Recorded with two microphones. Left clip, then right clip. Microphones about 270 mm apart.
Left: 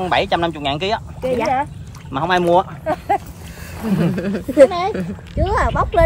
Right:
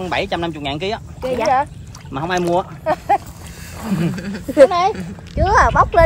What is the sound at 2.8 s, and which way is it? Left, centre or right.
Speech, right.